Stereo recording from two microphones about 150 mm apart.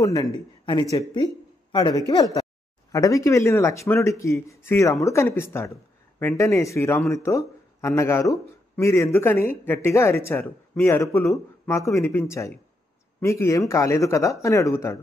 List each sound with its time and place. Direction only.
0.0 s speech: 25° left (ahead or behind)